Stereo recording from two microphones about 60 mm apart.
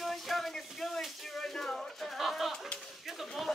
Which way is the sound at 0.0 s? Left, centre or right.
Centre.